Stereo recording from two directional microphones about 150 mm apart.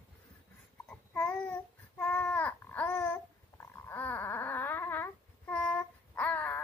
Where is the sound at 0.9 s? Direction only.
10° left (ahead or behind).